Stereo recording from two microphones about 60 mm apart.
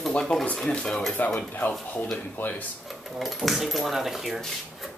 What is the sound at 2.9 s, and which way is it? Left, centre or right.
Speech, centre.